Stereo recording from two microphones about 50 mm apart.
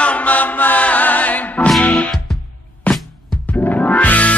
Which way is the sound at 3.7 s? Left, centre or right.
Left.